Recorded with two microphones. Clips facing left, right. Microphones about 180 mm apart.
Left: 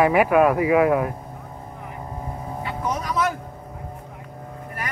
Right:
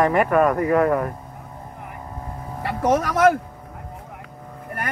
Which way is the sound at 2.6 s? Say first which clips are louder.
Right 8 dB; 80° right.